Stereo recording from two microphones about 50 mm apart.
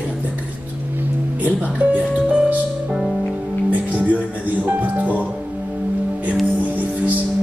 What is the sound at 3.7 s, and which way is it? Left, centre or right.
Music, right.